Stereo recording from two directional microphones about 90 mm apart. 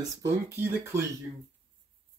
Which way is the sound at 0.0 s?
35° right (ahead or behind).